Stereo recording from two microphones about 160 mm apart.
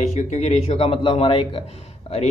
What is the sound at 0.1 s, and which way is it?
A man's voice, 45° left (ahead or behind).